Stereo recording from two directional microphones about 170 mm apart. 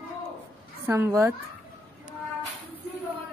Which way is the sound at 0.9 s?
15° right (ahead or behind).